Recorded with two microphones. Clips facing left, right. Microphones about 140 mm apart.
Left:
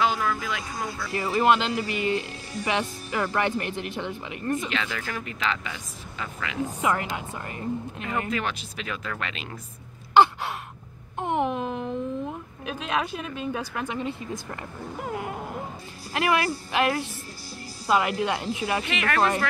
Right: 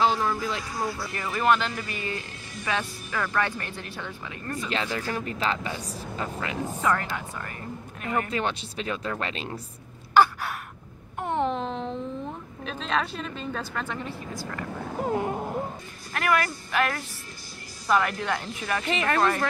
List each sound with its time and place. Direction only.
0.0 s a sound: 30° right (ahead or behind)
1.1 s speech: 30° left (ahead or behind)
1.4 s a woman's voice: 15° left (ahead or behind)
4.6 s speech: 35° right (ahead or behind)
6.6 s a woman's voice: 15° left (ahead or behind)
8.3 s speech: 30° right (ahead or behind)
10.1 s a sound: 20° left (ahead or behind)
12.6 s a woman's voice: 10° left (ahead or behind)
15.0 s a sound: 35° right (ahead or behind)
16.1 s a woman's voice: 20° left (ahead or behind)
18.9 s speech: 35° right (ahead or behind)